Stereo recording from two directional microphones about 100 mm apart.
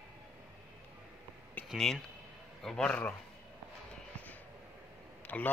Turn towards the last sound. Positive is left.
turn(degrees=15)  # may be behind; listen again after turning